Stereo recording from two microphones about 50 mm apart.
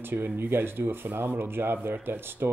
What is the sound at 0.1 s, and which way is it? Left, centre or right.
Speech, right.